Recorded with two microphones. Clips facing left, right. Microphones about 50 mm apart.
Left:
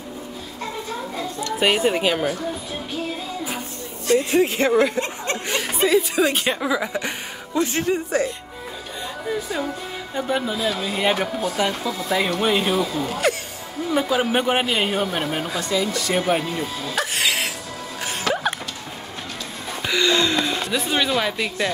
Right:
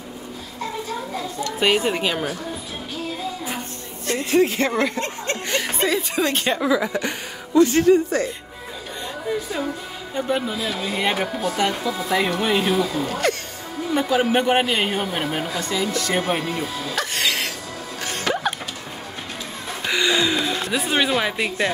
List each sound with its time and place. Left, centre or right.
1.6 s speech: centre
4.3 s speech: centre
4.6 s chuckle: centre
5.3 s speech: centre
10.1 s speech: centre
11.9 s speech: centre
16.9 s music: centre
19.9 s a sound: centre